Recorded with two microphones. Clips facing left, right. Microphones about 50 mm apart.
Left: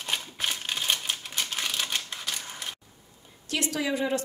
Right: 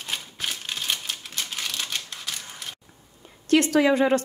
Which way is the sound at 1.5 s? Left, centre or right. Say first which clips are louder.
Even; centre.